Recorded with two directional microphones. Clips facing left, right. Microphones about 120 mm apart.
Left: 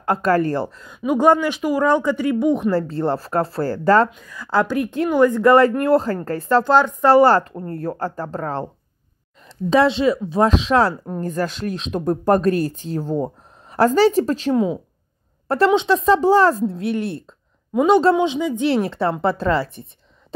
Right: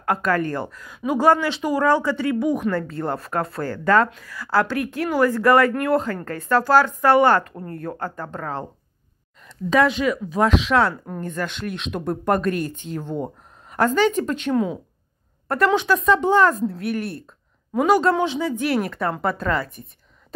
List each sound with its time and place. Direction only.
0.0 s a woman's voice: 35° left (ahead or behind)
4.1 s speech: 20° left (ahead or behind); by 6.6 s 35° left (ahead or behind)
6.6 s a woman's voice: 20° left (ahead or behind)